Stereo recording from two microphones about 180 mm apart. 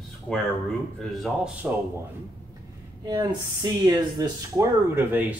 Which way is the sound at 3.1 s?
25° right (ahead or behind).